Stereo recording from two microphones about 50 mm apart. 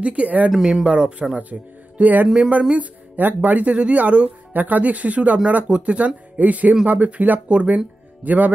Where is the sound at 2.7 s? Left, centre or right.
Right.